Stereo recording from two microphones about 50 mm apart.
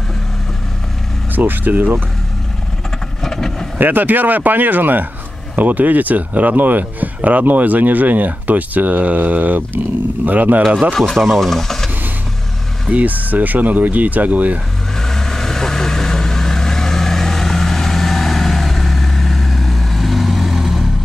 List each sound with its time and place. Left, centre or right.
1.3 s speech: right
3.2 s vehicle: centre
3.8 s speech: right
11.0 s speech: centre
12.9 s speech: right
15.0 s vehicle: centre